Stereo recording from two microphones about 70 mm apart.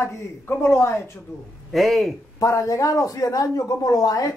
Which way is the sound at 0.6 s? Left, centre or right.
Left.